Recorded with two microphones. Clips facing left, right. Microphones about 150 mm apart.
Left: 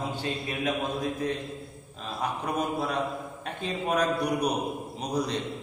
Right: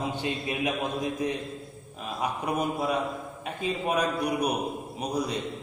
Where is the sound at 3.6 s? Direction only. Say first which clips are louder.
Even; 10° right (ahead or behind).